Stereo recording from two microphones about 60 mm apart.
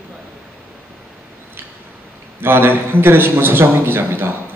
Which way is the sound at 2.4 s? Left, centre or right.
Right.